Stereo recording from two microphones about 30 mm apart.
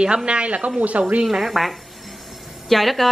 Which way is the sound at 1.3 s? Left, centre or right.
Centre.